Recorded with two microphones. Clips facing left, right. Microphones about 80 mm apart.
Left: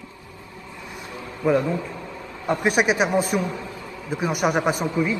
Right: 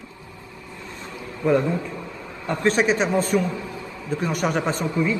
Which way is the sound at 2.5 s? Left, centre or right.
Centre.